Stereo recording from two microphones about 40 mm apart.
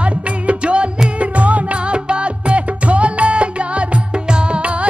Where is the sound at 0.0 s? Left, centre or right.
Right.